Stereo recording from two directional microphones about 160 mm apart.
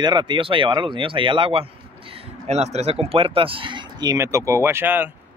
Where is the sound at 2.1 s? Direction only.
45° right (ahead or behind).